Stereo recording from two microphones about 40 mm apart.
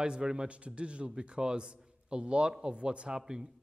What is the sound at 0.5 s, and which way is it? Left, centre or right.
A man's voice, right.